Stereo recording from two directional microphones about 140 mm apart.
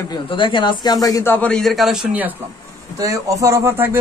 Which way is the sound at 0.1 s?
35° left (ahead or behind).